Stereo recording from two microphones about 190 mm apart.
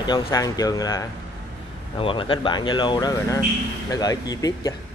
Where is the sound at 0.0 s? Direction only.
20° left (ahead or behind).